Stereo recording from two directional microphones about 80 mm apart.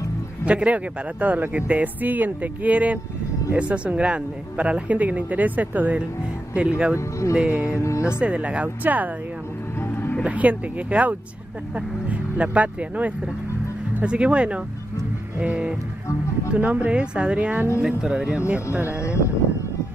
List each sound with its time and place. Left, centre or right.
0.5 s speech: centre
7.6 s speech: left
8.2 s speech: centre
9.8 s music: left
10.2 s speech: centre
18.5 s speech: right
19.0 s speech: left